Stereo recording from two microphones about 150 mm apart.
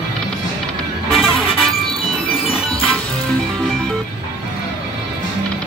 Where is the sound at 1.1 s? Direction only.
35° left (ahead or behind).